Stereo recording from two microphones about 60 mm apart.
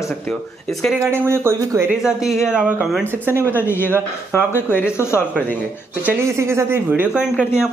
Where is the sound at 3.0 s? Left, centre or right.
Right.